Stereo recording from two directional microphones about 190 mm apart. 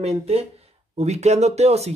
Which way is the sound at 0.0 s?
30° right (ahead or behind).